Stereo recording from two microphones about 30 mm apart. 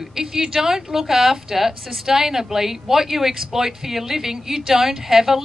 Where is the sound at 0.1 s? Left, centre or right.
Centre.